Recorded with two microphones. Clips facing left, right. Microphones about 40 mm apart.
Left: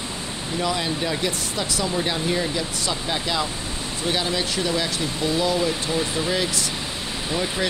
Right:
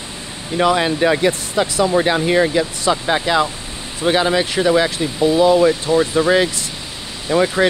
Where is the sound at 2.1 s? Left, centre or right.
Right.